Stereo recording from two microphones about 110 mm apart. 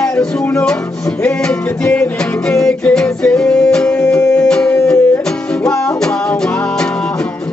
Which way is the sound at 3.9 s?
25° left (ahead or behind).